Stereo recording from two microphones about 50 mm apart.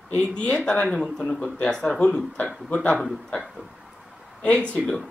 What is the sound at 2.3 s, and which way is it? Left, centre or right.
Speech, left.